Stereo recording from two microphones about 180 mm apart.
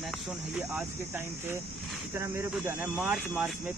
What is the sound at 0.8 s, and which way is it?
Speech, 10° right (ahead or behind).